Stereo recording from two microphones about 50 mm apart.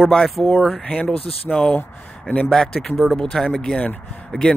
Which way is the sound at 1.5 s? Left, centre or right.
Centre.